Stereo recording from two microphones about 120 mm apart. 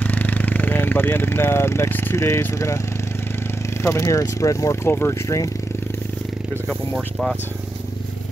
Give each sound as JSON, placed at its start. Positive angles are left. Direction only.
{"t": 0.0, "sound": "speech", "side_deg": 15}
{"t": 3.8, "sound": "speech", "side_deg": 25}
{"t": 6.7, "sound": "speech", "side_deg": 5}